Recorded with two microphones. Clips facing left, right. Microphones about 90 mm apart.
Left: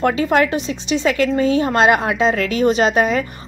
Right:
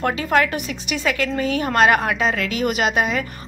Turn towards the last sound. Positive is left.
turn(degrees=35)  # may be behind; listen again after turning